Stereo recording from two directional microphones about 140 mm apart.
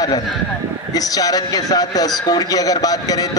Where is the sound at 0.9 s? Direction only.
25° left (ahead or behind).